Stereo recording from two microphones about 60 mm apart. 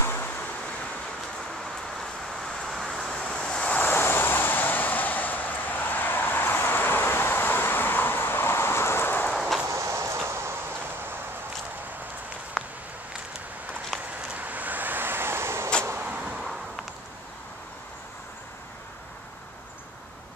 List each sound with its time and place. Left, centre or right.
0.0 s waves: left
1.6 s vehicle: centre
3.2 s vehicle: centre
3.7 s vehicle: left
9.7 s a sound: right
12.6 s a sound: centre
13.9 s a sound: centre
14.3 s vehicle: right
16.0 s vehicle: right